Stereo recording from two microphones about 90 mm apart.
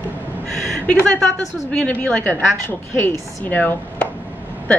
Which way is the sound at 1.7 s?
10° left (ahead or behind).